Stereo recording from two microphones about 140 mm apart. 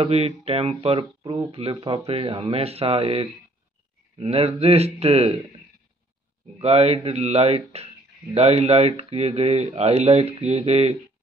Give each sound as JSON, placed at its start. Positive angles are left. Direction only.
{"t": 0.0, "sound": "speech", "side_deg": -45}
{"t": 6.6, "sound": "speech", "side_deg": -50}